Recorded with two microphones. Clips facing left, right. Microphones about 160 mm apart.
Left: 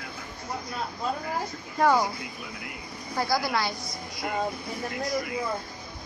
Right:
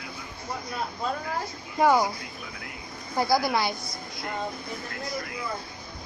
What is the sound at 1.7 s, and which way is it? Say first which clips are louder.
Speech: right 1 dB; 10° right (ahead or behind).